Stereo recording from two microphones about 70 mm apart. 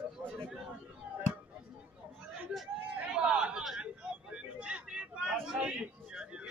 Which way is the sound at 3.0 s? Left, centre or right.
Centre.